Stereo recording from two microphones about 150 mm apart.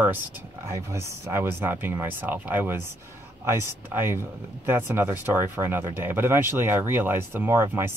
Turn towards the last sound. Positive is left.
turn(degrees=-15)  # may be behind; listen again after turning